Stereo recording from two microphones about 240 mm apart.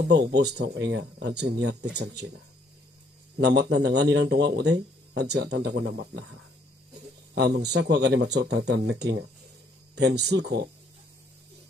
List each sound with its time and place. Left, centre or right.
0.0 s speech: right
3.3 s speech: right